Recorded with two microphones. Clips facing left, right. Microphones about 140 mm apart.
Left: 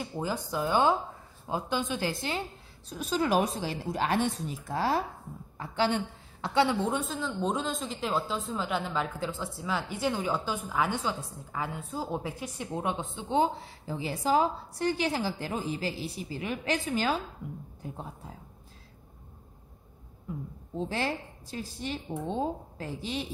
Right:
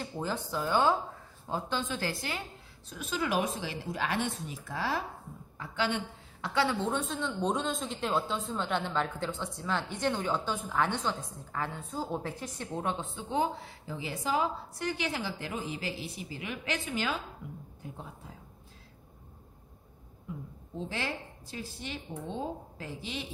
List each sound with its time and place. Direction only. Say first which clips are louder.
0.0 s a woman's voice: left 2 dB; 10° left (ahead or behind)
2.9 s a woman's voice: left 5 dB; 35° left (ahead or behind)
6.4 s a woman's voice: left 3 dB; 20° left (ahead or behind)
7.1 s a woman's voice: even; centre (ahead or behind); by 13.9 s 25° left (ahead or behind)
13.9 s a woman's voice: left 5 dB; 35° left (ahead or behind)
20.9 s a woman's voice: left 4 dB; 35° left (ahead or behind)